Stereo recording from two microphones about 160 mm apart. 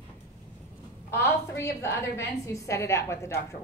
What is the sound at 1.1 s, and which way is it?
A woman's voice, 15° left (ahead or behind).